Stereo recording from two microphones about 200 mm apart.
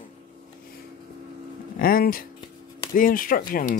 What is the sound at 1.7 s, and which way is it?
Speech, 45° left (ahead or behind).